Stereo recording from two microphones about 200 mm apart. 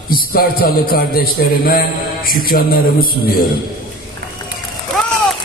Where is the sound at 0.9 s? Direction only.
45° left (ahead or behind).